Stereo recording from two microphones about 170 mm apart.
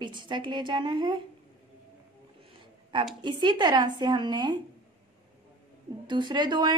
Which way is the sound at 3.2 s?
25° right (ahead or behind).